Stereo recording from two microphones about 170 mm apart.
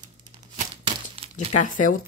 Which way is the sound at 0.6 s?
35° right (ahead or behind).